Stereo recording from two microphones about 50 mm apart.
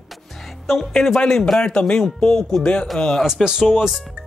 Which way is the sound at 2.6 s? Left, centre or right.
Centre.